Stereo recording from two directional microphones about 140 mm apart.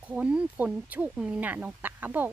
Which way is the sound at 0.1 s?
5° right (ahead or behind).